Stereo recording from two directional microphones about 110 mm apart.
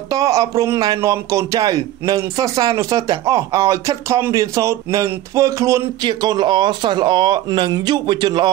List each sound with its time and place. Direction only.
0.1 s speech: 30° right (ahead or behind)
6.0 s speech: 40° right (ahead or behind)